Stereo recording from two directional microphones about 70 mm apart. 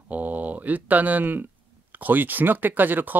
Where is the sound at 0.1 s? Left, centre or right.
Right.